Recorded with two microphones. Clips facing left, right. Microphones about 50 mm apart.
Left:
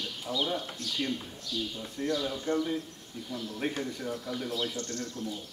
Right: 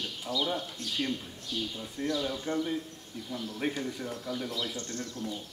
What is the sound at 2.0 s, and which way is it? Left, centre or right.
Speech, right.